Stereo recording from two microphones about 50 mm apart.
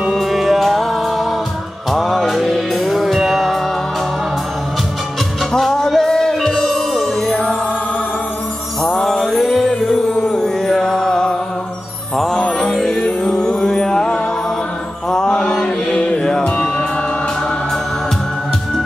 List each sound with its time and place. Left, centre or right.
0.0 s music: centre
5.5 s music: centre
9.0 s music: centre
12.4 s music: centre